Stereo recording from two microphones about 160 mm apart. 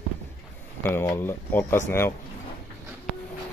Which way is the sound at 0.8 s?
15° left (ahead or behind).